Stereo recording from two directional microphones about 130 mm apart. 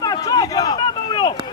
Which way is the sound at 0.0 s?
30° left (ahead or behind).